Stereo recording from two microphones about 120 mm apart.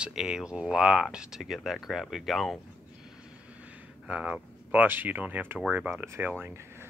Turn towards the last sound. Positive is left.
turn(degrees=-20)  # may be behind; listen again after turning